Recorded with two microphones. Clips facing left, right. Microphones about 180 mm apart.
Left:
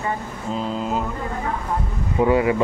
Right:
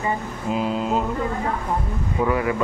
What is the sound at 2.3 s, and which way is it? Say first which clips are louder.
Speech: left 5 dB; 25° left (ahead or behind).